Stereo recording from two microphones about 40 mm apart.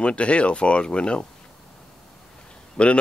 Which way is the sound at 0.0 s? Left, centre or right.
Left.